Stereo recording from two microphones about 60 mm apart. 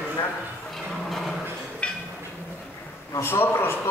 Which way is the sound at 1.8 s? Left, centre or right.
Centre.